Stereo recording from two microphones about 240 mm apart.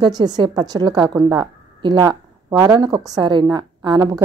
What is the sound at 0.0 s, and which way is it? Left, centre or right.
A woman's voice, centre.